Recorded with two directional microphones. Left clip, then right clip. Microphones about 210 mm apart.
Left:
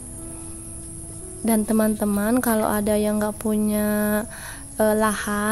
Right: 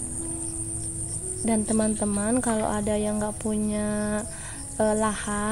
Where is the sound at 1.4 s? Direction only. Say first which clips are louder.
Left 4 dB; 10° left (ahead or behind).